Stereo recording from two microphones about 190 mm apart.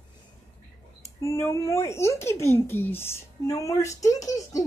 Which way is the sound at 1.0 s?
15° left (ahead or behind).